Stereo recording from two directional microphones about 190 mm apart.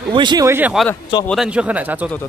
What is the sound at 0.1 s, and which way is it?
Speech, 25° right (ahead or behind).